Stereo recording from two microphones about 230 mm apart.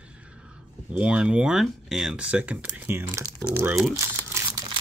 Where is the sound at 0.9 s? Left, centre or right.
Centre.